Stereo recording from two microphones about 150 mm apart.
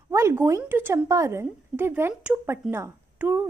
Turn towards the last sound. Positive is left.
turn(degrees=-15)  # may be behind; listen again after turning